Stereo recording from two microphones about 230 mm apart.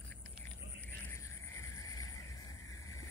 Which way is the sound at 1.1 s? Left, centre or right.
Centre.